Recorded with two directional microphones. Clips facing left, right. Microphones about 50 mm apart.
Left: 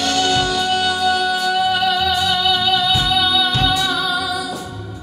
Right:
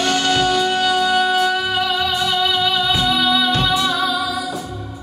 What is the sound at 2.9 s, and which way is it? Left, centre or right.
Music, centre.